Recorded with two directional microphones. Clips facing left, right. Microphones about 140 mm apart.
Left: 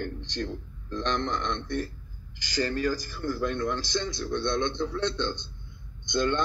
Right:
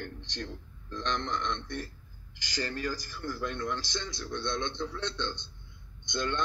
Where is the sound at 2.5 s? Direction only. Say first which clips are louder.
Left 7 dB; 80° left.